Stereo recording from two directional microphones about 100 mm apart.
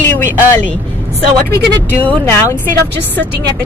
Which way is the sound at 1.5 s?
20° left (ahead or behind).